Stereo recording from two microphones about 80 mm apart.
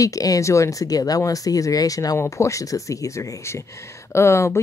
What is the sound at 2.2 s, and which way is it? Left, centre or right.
Speech, left.